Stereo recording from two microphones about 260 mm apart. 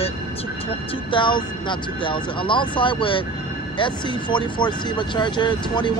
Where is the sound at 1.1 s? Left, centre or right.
Centre.